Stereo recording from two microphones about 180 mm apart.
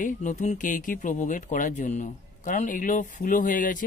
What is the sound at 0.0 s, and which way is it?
Speech, 45° left (ahead or behind).